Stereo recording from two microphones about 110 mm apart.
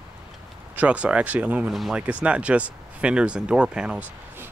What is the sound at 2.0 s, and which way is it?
Speech, 10° right (ahead or behind).